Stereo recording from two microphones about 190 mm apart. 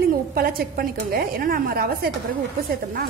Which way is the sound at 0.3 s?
50° right (ahead or behind).